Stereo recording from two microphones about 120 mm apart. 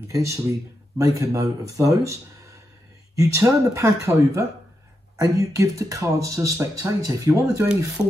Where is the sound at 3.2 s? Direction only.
25° right (ahead or behind).